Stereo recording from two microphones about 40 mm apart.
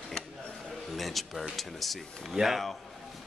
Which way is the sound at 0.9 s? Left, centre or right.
Centre.